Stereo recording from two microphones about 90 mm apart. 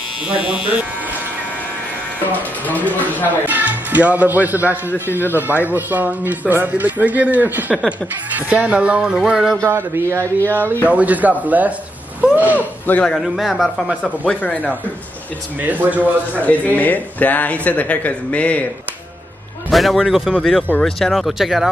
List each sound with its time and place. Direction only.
2.6 s a man's voice: 20° left (ahead or behind)
3.3 s speech: 20° right (ahead or behind)
4.9 s a man's voice: 25° left (ahead or behind)
5.7 s speech: 20° right (ahead or behind)
9.6 s a man's voice: 25° right (ahead or behind)
10.4 s a man's voice: 20° left (ahead or behind)
10.9 s speech: 15° right (ahead or behind)
12.2 s a sound: 15° right (ahead or behind)
12.5 s speech: 20° left (ahead or behind); by 13.8 s centre (ahead or behind)
14.0 s speech: 15° left (ahead or behind)
15.6 s speech: 20° right (ahead or behind)
16.3 s speech: 15° left (ahead or behind)
19.7 s speech: centre (ahead or behind)